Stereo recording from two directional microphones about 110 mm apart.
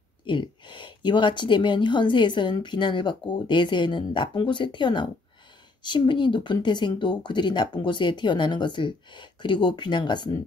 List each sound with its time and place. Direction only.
0.3 s speech: 45° left (ahead or behind)